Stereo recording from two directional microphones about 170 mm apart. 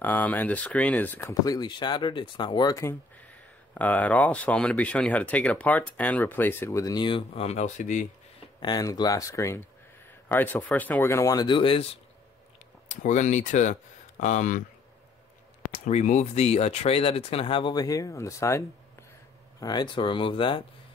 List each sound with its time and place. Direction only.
0.0 s speech: 10° left (ahead or behind)
1.4 s speech: 25° left (ahead or behind); by 8.1 s 45° left (ahead or behind)
8.5 s speech: 25° left (ahead or behind)
12.8 s speech: 45° left (ahead or behind)
15.7 s speech: 40° left (ahead or behind); by 18.6 s 15° left (ahead or behind)
19.6 s speech: 25° left (ahead or behind)